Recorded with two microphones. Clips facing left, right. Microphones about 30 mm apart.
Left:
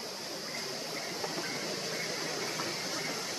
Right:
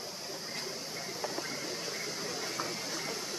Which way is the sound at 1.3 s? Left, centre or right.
Left.